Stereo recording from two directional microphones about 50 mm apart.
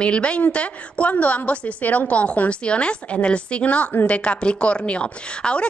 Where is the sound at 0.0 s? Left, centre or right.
Left.